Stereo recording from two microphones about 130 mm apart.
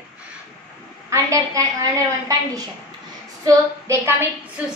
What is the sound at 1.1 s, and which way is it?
Speech, 25° right (ahead or behind).